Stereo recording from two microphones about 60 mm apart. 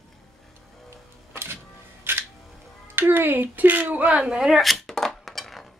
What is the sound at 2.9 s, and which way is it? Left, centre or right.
Speech, right.